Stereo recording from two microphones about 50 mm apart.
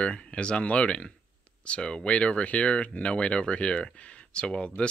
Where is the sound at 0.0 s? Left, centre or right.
Left.